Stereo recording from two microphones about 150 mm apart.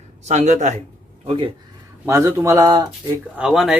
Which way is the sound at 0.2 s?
50° right (ahead or behind).